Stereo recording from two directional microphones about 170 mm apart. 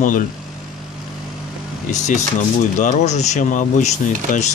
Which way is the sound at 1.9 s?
45° left (ahead or behind).